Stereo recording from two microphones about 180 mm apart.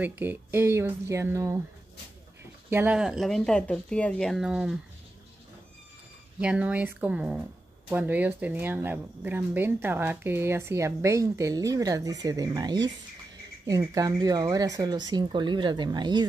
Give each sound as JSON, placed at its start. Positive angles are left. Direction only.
{"t": 0.2, "sound": "speech", "side_deg": -10}
{"t": 2.7, "sound": "speech", "side_deg": -10}
{"t": 6.4, "sound": "speech", "side_deg": -5}